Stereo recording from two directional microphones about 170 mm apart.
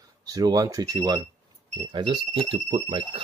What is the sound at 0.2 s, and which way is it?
Speech, 20° right (ahead or behind).